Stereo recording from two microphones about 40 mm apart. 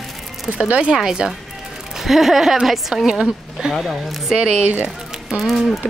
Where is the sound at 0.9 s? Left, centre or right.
Centre.